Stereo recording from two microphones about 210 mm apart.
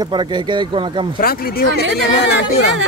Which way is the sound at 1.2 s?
45° left (ahead or behind).